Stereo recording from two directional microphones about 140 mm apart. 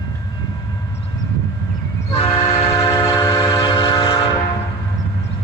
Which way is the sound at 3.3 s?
40° left (ahead or behind).